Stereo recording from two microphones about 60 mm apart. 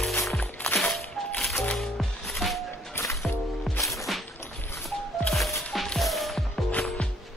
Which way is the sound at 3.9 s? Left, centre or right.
Centre.